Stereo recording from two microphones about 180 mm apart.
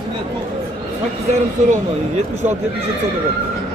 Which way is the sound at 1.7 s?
40° right (ahead or behind).